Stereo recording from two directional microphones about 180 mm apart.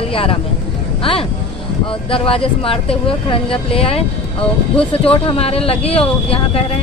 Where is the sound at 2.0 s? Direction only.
30° left (ahead or behind).